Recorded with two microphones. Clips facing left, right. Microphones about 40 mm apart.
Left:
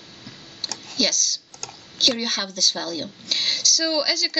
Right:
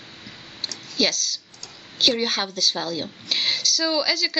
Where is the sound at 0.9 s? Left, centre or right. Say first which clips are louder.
Right 1 dB; centre.